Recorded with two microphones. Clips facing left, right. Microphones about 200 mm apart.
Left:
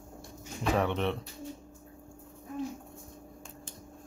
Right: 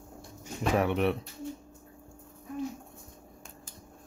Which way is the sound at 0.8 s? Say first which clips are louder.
Right 3 dB; 10° right (ahead or behind).